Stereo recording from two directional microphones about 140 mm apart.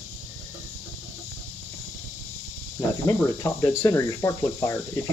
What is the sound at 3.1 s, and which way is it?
Speech, 25° left (ahead or behind).